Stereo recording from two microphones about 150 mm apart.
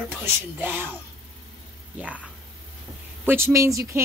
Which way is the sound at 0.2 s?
15° right (ahead or behind).